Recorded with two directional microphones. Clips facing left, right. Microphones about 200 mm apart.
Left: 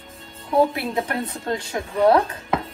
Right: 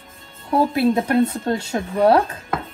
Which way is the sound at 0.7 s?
30° right (ahead or behind).